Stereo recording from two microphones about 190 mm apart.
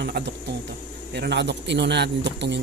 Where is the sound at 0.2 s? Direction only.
55° right (ahead or behind).